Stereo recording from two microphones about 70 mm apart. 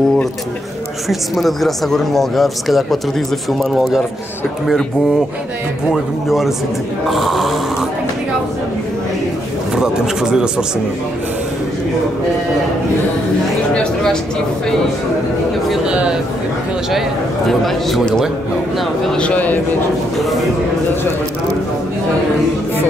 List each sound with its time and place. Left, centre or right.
1.0 s speech: centre
5.9 s speech: centre
9.8 s speech: centre
15.9 s speech: centre
17.5 s speech: centre
19.1 s speech: centre